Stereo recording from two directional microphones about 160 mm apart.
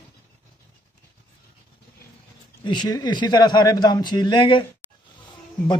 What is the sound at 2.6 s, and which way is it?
A man's voice, 30° left (ahead or behind).